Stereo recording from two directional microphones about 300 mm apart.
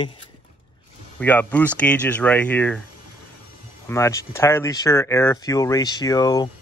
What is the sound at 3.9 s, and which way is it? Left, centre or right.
Speech, centre.